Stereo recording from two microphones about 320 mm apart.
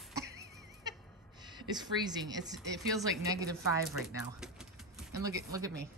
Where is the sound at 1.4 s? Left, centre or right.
Centre.